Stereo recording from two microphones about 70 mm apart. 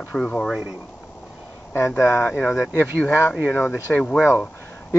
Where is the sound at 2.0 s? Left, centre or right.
Left.